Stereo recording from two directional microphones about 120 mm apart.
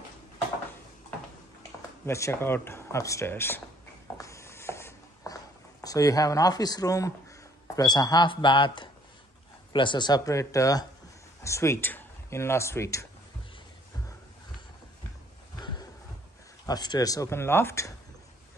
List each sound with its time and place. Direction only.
2.0 s speech: 25° left (ahead or behind)
4.2 s writing: 25° left (ahead or behind)
7.7 s speech: 35° left (ahead or behind)
16.6 s speech: 35° left (ahead or behind)